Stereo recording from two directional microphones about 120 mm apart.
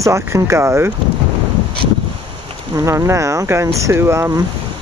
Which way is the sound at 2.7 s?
25° right (ahead or behind).